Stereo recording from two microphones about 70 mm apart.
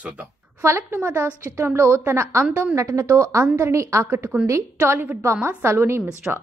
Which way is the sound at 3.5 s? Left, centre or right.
Right.